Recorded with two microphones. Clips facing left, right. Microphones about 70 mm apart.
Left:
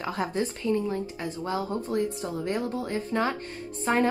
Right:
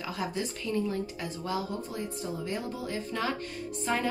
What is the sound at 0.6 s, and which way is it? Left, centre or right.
Speech, left.